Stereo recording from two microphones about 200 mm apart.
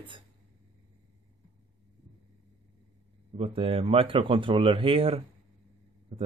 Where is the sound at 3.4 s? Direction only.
30° right (ahead or behind).